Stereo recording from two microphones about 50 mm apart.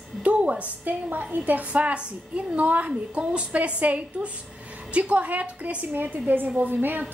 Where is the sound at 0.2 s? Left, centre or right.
Right.